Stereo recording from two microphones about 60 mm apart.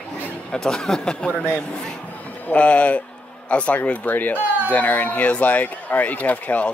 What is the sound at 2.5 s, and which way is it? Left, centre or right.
Speech, left.